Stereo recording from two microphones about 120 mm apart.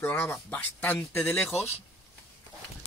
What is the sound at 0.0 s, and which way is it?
Speech, 20° left (ahead or behind).